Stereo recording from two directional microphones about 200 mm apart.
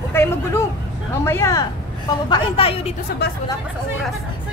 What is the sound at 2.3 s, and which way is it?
Speech, 25° left (ahead or behind).